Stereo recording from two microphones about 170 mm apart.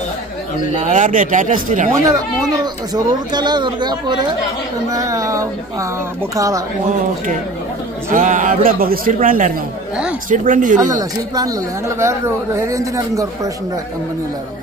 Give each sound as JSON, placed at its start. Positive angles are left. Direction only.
{"t": 0.7, "sound": "a man's voice", "side_deg": -50}
{"t": 2.0, "sound": "speech", "side_deg": -20}
{"t": 8.1, "sound": "a man's voice", "side_deg": -50}
{"t": 10.9, "sound": "speech", "side_deg": -20}